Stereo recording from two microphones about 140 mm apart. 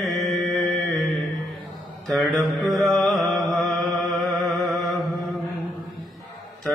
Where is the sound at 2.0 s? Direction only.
Centre (ahead or behind).